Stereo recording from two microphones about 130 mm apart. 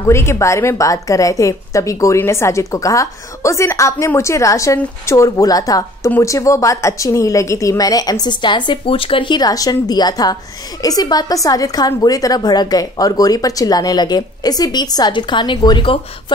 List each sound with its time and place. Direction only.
0.0 s a woman's voice: 20° left (ahead or behind); by 16.0 s 40° left (ahead or behind)